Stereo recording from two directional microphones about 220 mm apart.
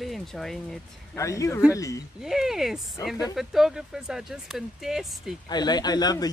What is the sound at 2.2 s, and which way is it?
Speech, centre (ahead or behind).